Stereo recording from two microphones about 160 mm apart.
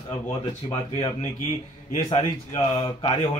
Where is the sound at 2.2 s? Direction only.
25° left (ahead or behind).